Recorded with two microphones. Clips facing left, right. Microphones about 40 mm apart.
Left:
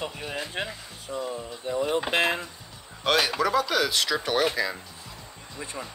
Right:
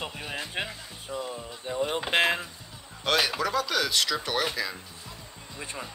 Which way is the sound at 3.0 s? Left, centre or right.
Centre.